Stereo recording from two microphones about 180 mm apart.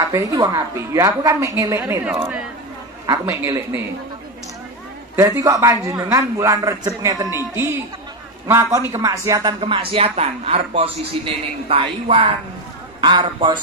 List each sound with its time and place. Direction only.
0.1 s a man's voice: 20° right (ahead or behind)
3.1 s a man's voice: 15° right (ahead or behind)
5.1 s a man's voice: 15° right (ahead or behind)